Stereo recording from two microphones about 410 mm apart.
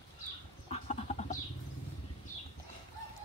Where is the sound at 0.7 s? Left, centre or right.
Centre.